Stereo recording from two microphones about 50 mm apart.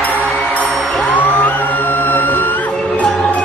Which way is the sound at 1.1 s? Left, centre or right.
Left.